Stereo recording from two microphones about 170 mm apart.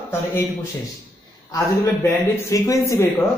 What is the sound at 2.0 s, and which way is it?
Speech, 20° left (ahead or behind).